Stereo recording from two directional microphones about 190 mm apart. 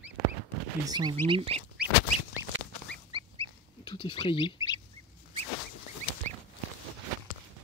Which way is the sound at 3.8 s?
25° left (ahead or behind).